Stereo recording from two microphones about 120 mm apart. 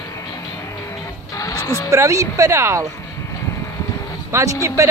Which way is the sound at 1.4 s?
30° left (ahead or behind).